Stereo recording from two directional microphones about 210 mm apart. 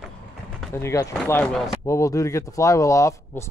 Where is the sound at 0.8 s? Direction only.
15° left (ahead or behind).